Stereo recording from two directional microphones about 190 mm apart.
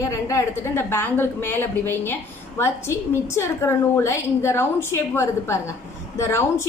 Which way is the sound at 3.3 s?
15° left (ahead or behind).